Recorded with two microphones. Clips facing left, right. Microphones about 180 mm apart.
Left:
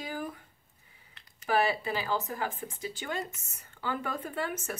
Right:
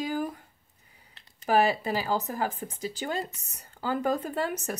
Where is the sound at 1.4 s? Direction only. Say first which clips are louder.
Right 4 dB; 40° right (ahead or behind).